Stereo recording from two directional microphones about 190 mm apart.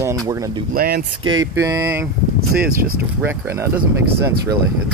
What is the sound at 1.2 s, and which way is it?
Speech, 20° right (ahead or behind).